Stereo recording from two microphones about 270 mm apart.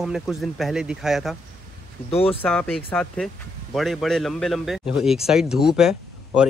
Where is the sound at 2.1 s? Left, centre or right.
Left.